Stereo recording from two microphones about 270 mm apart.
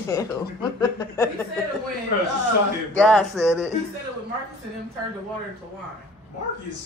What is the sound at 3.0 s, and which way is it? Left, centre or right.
Speech, centre.